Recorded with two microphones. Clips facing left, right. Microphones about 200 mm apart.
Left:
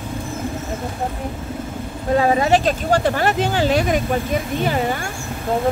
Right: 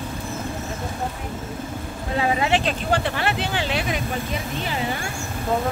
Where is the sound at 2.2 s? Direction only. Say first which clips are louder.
Left 5 dB; 40° left (ahead or behind).